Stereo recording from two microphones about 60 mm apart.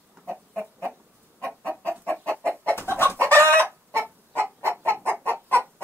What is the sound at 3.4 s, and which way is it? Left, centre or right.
Chicken, right.